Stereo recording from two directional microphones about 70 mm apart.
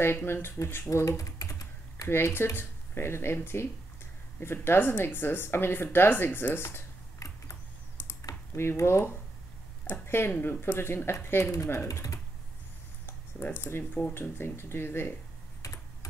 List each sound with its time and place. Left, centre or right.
0.0 s a woman's voice: left
0.8 s typing: left
2.0 s a woman's voice: left
7.2 s a sound: left
8.5 s a woman's voice: left
11.5 s speech: left
13.0 s typing: left
14.1 s a woman's voice: left
15.6 s computer keyboard: left